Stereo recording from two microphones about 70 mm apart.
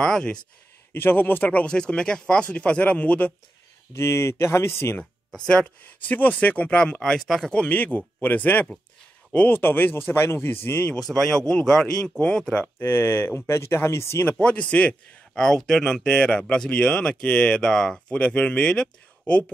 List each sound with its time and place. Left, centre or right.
0.0 s a man's voice: centre
0.9 s speech: left
3.9 s speech: left
5.5 s a man's voice: centre
7.5 s speech: left
11.0 s a man's voice: centre
12.7 s speech: left
14.4 s a man's voice: centre